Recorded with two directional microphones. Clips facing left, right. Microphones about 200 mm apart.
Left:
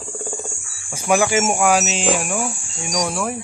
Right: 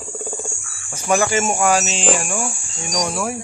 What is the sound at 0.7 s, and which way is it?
Speech, 10° left (ahead or behind).